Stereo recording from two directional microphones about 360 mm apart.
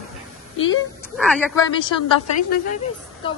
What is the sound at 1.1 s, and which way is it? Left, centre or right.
Speech, centre.